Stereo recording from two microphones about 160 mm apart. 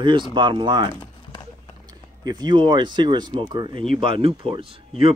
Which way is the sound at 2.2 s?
25° right (ahead or behind).